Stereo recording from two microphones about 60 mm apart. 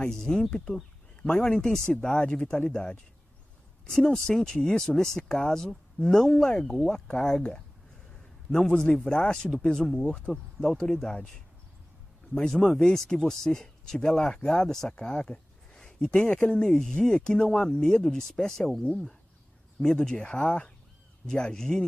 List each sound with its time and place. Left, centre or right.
0.0 s speech: centre
12.4 s speech: centre
19.8 s speech: centre